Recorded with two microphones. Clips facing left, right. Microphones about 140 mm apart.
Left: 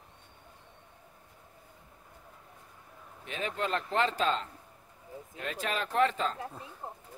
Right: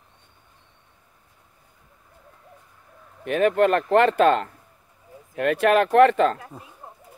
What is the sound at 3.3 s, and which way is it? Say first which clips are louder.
Speech: right 15 dB; 60° right (ahead or behind).